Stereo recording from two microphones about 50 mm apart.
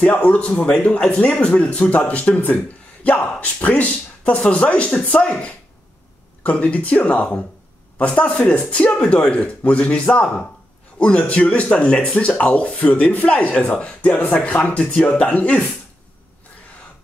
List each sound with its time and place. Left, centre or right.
0.0 s speech: left
1.0 s speech: centre